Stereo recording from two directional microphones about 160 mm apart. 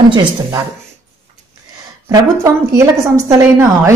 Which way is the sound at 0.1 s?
30° right (ahead or behind).